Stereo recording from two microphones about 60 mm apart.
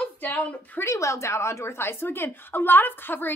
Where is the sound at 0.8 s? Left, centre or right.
Left.